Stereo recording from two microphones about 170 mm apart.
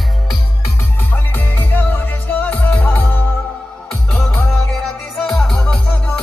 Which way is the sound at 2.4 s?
10° left (ahead or behind).